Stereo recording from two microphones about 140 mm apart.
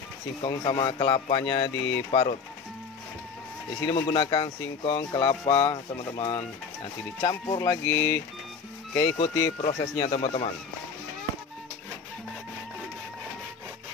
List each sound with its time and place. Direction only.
0.4 s speech: 35° left (ahead or behind)
3.9 s speech: 35° left (ahead or behind)
8.9 s speech: 40° left (ahead or behind)